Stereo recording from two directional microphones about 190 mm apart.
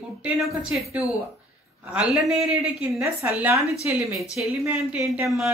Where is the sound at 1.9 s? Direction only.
5° right (ahead or behind).